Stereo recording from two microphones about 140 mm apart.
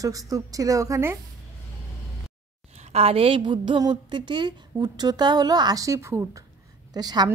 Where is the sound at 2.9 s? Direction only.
45° right (ahead or behind).